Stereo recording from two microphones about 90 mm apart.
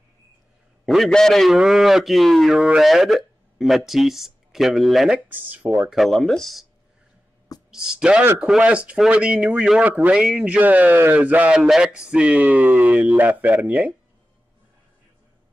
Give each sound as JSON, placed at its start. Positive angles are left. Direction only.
{"t": 0.8, "sound": "a man's voice", "side_deg": 0}
{"t": 5.1, "sound": "speech", "side_deg": -20}
{"t": 5.9, "sound": "a man's voice", "side_deg": 0}
{"t": 7.7, "sound": "speech", "side_deg": -10}